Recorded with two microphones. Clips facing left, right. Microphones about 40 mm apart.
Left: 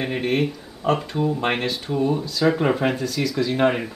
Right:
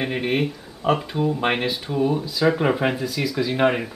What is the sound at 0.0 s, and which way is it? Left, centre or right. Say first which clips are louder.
Speech: even; centre.